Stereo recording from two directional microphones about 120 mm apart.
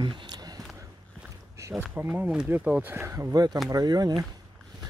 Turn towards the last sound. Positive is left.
turn(degrees=-35)  # may be behind; listen again after turning